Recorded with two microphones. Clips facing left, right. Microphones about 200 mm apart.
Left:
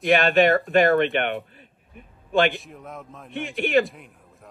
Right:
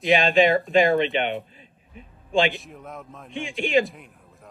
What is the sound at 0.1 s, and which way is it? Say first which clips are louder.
Speech: even; 55° left (ahead or behind).